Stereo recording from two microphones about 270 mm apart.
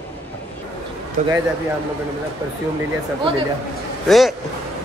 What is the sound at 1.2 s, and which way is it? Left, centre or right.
Speech, right.